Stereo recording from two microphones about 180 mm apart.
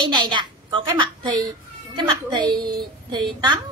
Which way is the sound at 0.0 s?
25° right (ahead or behind).